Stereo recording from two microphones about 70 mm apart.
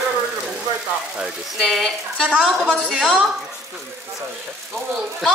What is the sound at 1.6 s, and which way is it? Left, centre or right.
A woman's voice, centre.